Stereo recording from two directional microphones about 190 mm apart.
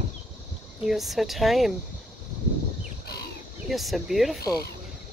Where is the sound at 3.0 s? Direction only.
55° left (ahead or behind).